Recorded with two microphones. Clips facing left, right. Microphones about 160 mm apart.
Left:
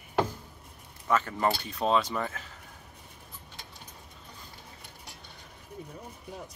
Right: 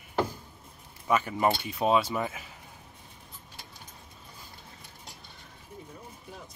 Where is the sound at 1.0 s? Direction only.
10° right (ahead or behind).